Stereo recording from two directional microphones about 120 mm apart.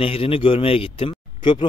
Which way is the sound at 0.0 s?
50° left (ahead or behind).